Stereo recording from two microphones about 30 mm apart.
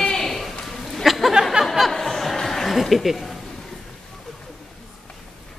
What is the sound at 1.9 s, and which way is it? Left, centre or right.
Music, centre.